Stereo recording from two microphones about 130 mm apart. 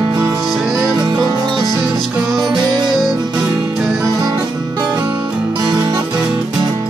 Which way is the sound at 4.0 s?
30° right (ahead or behind).